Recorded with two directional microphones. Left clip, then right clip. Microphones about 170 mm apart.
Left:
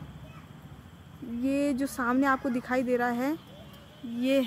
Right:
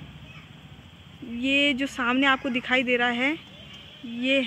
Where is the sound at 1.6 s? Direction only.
20° right (ahead or behind).